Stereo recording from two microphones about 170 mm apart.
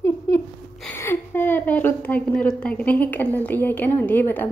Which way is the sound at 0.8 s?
15° left (ahead or behind).